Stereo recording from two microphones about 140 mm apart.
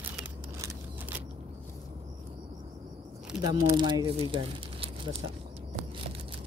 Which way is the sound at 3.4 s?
30° right (ahead or behind).